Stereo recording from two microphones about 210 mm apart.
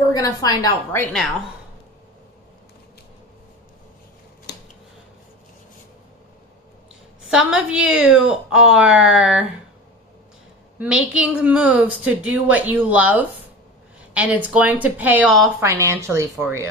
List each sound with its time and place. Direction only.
0.1 s a woman's voice: 15° left (ahead or behind)
7.2 s speech: 5° right (ahead or behind)
11.1 s a woman's voice: 5° right (ahead or behind)
15.6 s a woman's voice: 10° right (ahead or behind)